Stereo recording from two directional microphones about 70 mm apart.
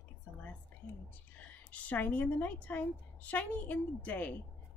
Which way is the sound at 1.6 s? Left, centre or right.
Left.